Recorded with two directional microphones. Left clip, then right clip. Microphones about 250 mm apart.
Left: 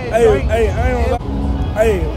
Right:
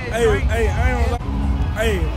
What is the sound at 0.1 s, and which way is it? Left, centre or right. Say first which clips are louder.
Speech: left 6 dB; centre.